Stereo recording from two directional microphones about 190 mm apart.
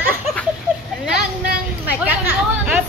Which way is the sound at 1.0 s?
5° right (ahead or behind).